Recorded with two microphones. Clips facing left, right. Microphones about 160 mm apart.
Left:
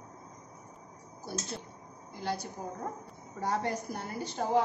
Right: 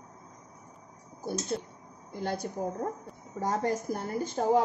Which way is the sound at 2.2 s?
55° right (ahead or behind).